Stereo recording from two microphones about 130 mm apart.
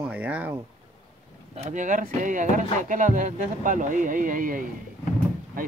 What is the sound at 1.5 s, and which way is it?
Speech, 65° right (ahead or behind).